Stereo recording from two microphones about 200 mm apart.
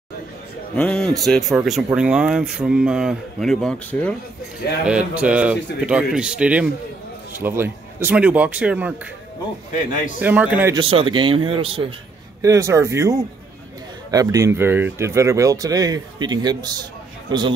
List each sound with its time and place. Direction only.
0.7 s speech: 5° left (ahead or behind)
9.8 s a man's voice: 40° left (ahead or behind)
10.2 s speech: 5° right (ahead or behind)
10.7 s speech: 25° right (ahead or behind)
12.4 s speech: 15° right (ahead or behind)